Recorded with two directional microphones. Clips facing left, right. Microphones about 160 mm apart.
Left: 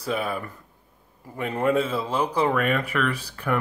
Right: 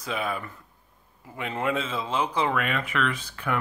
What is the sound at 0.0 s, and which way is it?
Speech, 35° left (ahead or behind).